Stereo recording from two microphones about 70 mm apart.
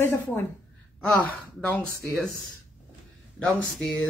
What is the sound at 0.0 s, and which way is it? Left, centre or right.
Speech, left.